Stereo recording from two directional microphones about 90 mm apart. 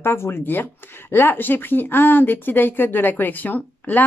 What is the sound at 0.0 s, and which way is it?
A woman's voice, 30° left (ahead or behind).